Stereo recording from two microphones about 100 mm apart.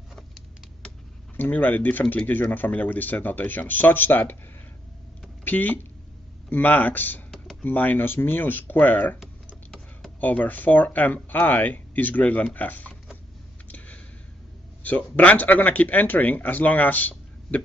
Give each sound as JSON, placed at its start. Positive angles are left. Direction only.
{"t": 0.8, "sound": "speech", "side_deg": 15}
{"t": 5.4, "sound": "speech", "side_deg": 20}
{"t": 10.2, "sound": "speech", "side_deg": 15}
{"t": 13.7, "sound": "a sound", "side_deg": 15}
{"t": 14.8, "sound": "speech", "side_deg": 15}